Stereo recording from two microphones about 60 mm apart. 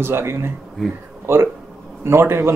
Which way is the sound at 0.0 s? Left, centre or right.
Right.